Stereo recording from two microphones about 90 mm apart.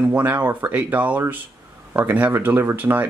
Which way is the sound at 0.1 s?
20° right (ahead or behind).